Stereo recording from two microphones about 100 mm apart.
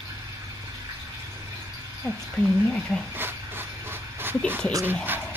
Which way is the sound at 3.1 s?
20° right (ahead or behind).